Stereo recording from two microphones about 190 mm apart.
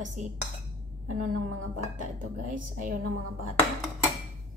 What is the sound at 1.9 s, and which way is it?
Speech, 45° right (ahead or behind).